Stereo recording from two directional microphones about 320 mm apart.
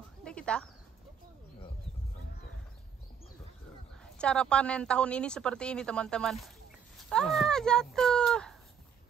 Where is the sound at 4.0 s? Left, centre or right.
Centre.